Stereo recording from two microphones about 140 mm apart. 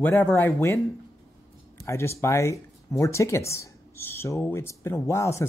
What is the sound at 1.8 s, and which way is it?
Speech, 20° left (ahead or behind).